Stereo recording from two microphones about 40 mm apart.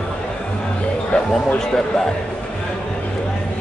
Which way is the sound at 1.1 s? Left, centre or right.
Left.